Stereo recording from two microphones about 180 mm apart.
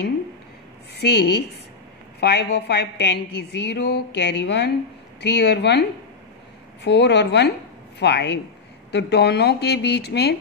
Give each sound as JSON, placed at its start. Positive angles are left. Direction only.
{"t": 0.9, "sound": "a woman's voice", "side_deg": 65}